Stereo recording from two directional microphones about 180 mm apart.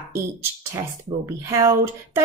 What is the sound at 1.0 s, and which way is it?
Speech, 15° right (ahead or behind).